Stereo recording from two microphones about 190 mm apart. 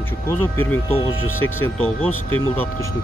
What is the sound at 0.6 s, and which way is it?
Speech, 10° left (ahead or behind).